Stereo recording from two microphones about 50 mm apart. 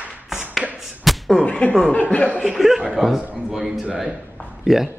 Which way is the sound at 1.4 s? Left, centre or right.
Centre.